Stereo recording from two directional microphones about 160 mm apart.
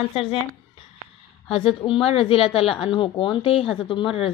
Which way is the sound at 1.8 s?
35° left (ahead or behind).